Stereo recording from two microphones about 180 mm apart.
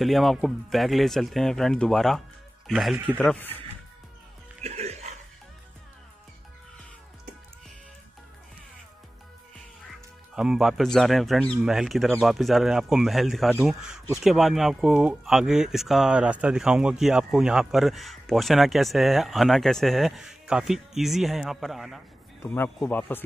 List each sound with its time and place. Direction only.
0.0 s speech: centre (ahead or behind)
4.6 s music: 35° right (ahead or behind)
9.8 s speech: 5° right (ahead or behind)
22.5 s speech: 10° left (ahead or behind)